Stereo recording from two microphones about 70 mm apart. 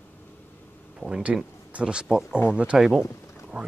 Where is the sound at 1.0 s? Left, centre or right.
Centre.